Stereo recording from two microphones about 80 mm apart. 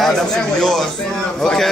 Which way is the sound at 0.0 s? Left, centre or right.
Centre.